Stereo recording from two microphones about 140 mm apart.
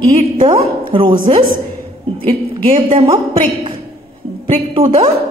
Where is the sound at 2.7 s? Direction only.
35° right (ahead or behind).